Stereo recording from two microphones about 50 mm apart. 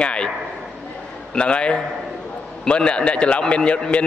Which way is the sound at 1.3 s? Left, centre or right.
Centre.